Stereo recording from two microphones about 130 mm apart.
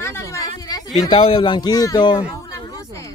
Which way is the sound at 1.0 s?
45° left (ahead or behind).